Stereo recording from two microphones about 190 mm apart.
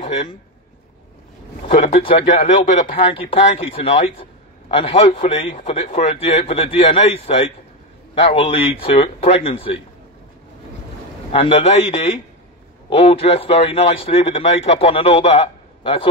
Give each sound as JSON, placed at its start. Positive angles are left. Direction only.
{"t": 0.0, "sound": "a man's voice", "side_deg": 30}
{"t": 1.8, "sound": "a man's voice", "side_deg": 30}
{"t": 11.3, "sound": "a man's voice", "side_deg": 35}